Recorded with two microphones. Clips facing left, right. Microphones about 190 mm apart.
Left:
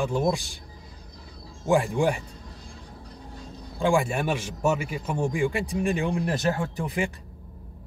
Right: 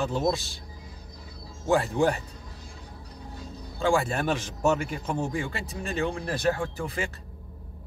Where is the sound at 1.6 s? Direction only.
15° left (ahead or behind).